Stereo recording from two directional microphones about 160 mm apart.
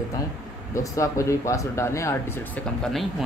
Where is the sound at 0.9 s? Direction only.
20° left (ahead or behind).